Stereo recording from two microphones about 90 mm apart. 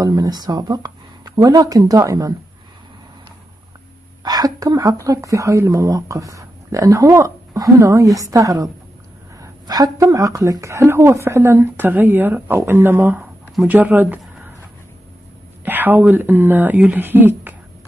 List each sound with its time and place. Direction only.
0.0 s speech: 45° right (ahead or behind)
4.2 s a woman's voice: 45° right (ahead or behind); by 14.2 s 15° right (ahead or behind)
15.6 s speech: 20° right (ahead or behind)